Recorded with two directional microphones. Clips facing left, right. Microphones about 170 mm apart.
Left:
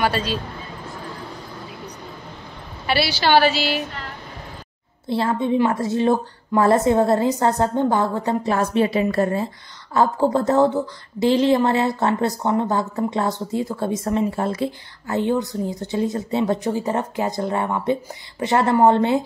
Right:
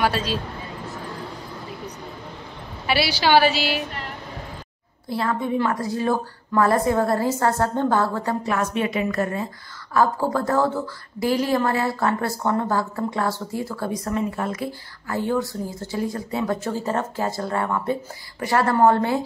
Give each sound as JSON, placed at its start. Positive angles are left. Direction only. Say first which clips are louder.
{"t": 0.0, "sound": "speech", "louder": "left 1 dB", "side_deg": -5}
{"t": 2.9, "sound": "a woman's voice", "louder": "left 1 dB", "side_deg": -10}
{"t": 5.1, "sound": "speech", "louder": "left 4 dB", "side_deg": 25}